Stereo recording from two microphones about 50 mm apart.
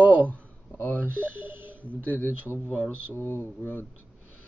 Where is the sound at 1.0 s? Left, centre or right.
Right.